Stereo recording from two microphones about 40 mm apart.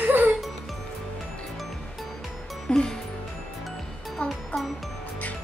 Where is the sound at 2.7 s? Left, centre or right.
Left.